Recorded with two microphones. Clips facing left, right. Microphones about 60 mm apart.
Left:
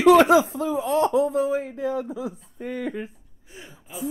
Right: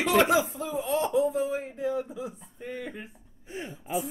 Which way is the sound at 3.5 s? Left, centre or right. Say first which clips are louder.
Right 9 dB; right.